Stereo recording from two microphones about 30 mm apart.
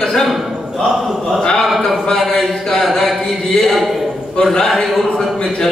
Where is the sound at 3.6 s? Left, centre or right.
Centre.